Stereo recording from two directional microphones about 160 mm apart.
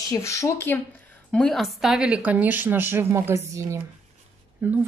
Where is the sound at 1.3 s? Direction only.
5° left (ahead or behind).